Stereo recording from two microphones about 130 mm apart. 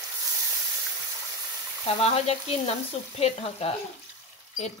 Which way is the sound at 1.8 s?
50° left (ahead or behind).